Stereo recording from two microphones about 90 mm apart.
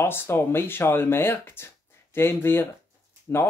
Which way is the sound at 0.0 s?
25° left (ahead or behind).